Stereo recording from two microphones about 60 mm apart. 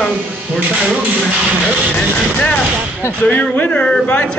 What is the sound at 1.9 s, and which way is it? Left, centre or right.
A man's voice, centre.